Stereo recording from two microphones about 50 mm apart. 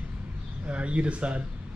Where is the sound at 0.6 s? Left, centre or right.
Right.